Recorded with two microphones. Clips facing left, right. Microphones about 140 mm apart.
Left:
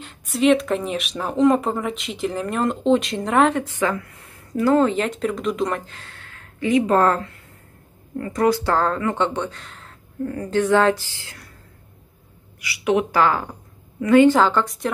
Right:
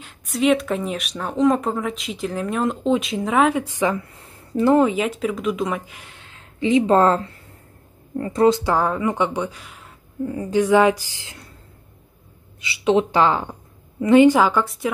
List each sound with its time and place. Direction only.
0.0 s speech: centre (ahead or behind)
4.0 s a sound: 30° right (ahead or behind)
4.7 s speech: 10° right (ahead or behind)
12.5 s speech: 25° right (ahead or behind); by 14.9 s 5° right (ahead or behind)